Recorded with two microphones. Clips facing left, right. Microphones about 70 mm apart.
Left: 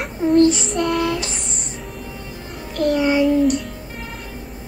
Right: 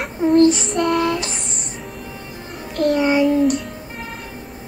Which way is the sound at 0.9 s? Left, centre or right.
Right.